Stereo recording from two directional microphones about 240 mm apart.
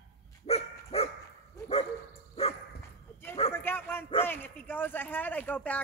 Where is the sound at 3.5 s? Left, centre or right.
Centre.